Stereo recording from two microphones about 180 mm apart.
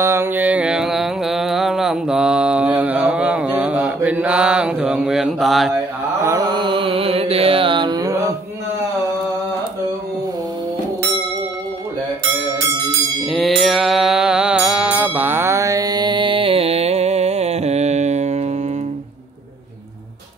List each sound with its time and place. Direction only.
0.0 s mantra: 15° right (ahead or behind)
6.2 s mantra: 20° right (ahead or behind)
13.3 s music: centre (ahead or behind); by 18.5 s 40° right (ahead or behind)